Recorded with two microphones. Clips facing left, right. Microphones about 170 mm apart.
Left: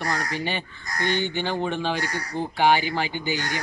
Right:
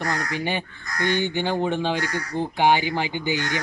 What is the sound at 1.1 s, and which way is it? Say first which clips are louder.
Speech: right 3 dB; 15° right (ahead or behind).